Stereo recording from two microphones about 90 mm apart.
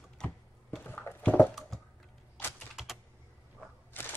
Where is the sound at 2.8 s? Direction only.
5° right (ahead or behind).